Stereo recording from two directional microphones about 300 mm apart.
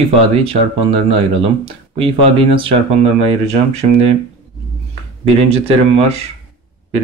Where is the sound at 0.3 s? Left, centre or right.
Centre.